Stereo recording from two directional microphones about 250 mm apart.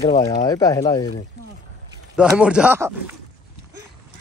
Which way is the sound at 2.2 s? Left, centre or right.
Centre.